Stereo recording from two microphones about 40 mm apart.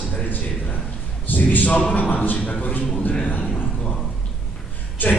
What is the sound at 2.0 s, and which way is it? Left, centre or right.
A man's voice, left.